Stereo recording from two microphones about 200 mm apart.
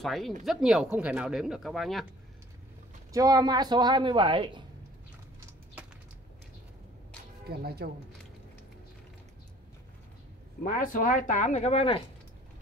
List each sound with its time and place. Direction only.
0.0 s speech: centre (ahead or behind)
3.1 s speech: 20° right (ahead or behind)
7.4 s speech: 50° right (ahead or behind)
10.6 s speech: 45° left (ahead or behind); by 12.0 s 30° left (ahead or behind)